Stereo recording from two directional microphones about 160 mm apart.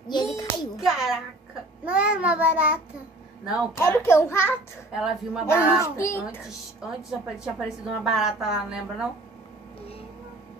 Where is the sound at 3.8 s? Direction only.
15° left (ahead or behind).